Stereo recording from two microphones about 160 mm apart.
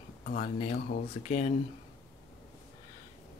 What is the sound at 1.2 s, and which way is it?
Speech, 50° left (ahead or behind).